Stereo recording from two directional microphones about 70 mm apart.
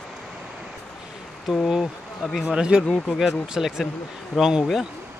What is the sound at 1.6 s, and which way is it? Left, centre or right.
Speech, centre.